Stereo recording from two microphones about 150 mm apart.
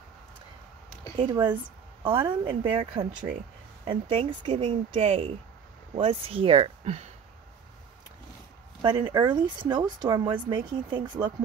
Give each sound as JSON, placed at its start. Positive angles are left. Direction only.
{"t": 2.0, "sound": "speech", "side_deg": -30}
{"t": 8.8, "sound": "speech", "side_deg": -30}